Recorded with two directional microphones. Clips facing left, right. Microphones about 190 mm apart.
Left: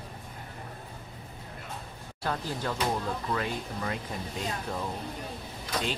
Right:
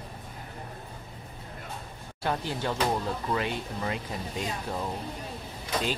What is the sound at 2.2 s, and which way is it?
Speech, 25° right (ahead or behind).